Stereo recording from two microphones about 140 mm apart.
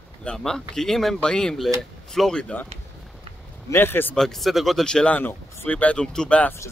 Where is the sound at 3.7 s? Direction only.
15° left (ahead or behind).